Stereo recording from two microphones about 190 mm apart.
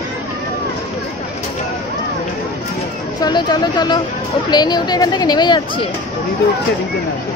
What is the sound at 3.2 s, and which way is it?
Speech, 20° left (ahead or behind).